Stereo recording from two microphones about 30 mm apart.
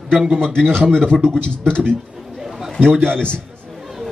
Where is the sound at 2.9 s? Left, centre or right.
Centre.